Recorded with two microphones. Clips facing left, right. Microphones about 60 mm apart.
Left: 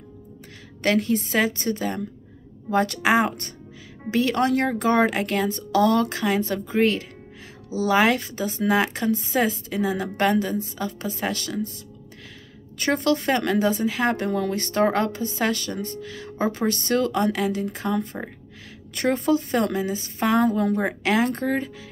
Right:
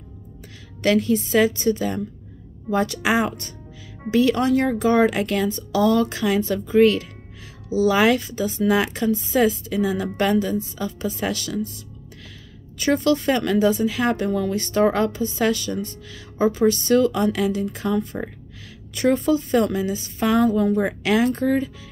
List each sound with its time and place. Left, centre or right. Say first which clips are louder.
0.8 s speech: right 2 dB; left
8.3 s speech: right 2 dB; left
12.7 s speech: right 3 dB; left
19.2 s speech: right 2 dB; left